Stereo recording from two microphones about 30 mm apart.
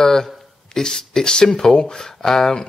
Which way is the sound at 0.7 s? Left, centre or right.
Centre.